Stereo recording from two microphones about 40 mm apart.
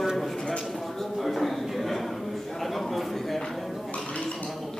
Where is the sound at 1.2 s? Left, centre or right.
Centre.